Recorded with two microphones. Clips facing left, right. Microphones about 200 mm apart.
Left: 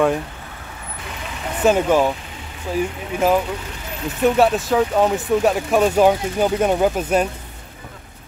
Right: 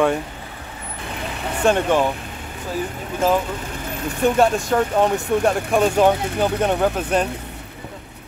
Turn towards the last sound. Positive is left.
turn(degrees=10)  # may be behind; listen again after turning